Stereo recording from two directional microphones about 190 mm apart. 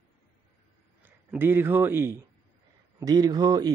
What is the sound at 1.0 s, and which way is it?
A man's voice, 10° right (ahead or behind).